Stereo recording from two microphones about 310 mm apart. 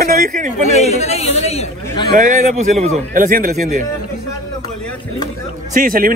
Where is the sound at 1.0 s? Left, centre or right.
Centre.